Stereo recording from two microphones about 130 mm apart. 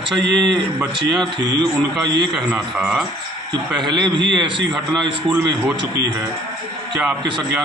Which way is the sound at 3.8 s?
35° right (ahead or behind).